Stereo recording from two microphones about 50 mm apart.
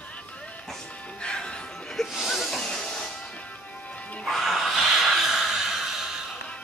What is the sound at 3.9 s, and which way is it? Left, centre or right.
Music, left.